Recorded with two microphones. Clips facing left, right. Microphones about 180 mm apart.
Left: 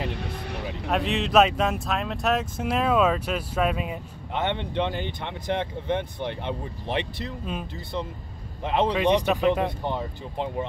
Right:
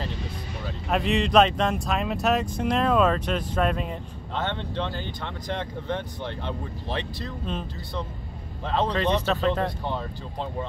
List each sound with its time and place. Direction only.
0.1 s vehicle: 65° left (ahead or behind)
0.8 s speech: centre (ahead or behind)
4.4 s speech: 15° left (ahead or behind)
8.6 s speech: 15° left (ahead or behind)